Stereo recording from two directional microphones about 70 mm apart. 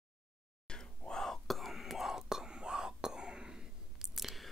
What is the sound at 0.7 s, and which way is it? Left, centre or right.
Whispering, centre.